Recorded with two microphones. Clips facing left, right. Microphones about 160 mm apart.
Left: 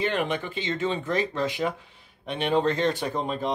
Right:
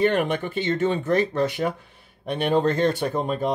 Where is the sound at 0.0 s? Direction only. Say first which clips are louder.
Right 5 dB; 45° right (ahead or behind).